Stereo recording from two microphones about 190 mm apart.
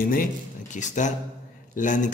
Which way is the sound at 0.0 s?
45° left (ahead or behind).